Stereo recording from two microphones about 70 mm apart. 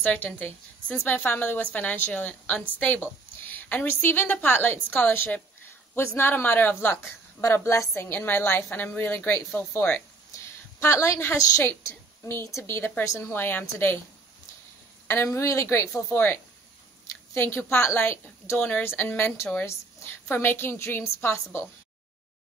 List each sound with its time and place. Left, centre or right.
0.0 s a woman's voice: left
10.8 s a woman's voice: left
12.3 s a woman's voice: left
15.2 s a woman's voice: left